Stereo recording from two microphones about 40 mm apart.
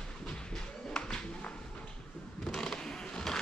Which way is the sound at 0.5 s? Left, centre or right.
Centre.